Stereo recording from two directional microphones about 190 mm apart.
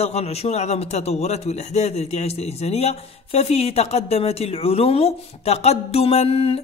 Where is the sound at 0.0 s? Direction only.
35° left (ahead or behind).